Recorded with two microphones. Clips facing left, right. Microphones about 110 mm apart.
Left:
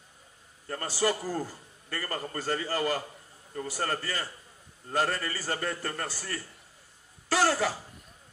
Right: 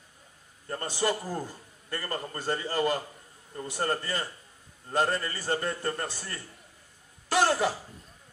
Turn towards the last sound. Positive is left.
turn(degrees=-20)  # may be behind; listen again after turning